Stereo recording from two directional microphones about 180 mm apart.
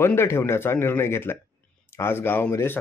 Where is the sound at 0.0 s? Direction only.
15° left (ahead or behind).